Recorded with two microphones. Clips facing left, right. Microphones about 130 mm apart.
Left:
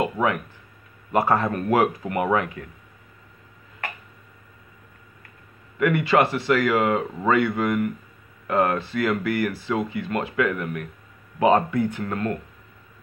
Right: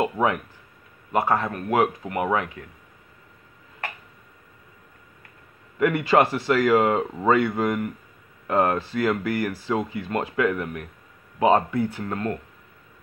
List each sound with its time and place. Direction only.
0.0 s speech: 30° right (ahead or behind)
1.1 s speech: 10° right (ahead or behind)
1.7 s speech: 15° right (ahead or behind)
5.8 s speech: 35° right (ahead or behind)